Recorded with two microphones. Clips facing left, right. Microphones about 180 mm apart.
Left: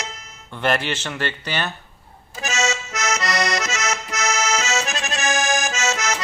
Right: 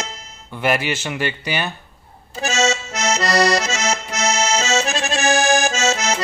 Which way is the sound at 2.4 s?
30° right (ahead or behind).